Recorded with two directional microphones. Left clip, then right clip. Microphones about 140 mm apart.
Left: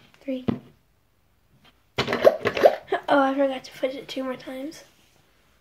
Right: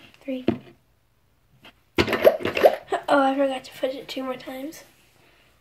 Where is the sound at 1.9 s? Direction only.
15° right (ahead or behind).